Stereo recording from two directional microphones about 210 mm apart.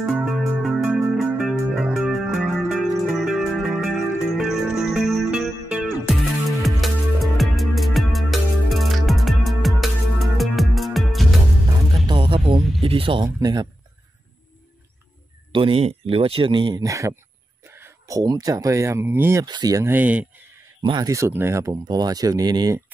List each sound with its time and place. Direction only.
0.0 s music: 5° right (ahead or behind)
12.1 s a sound: 25° right (ahead or behind)
12.8 s speech: 25° right (ahead or behind)
15.5 s speech: 25° right (ahead or behind); by 20.4 s 5° right (ahead or behind)
20.8 s speech: 20° right (ahead or behind)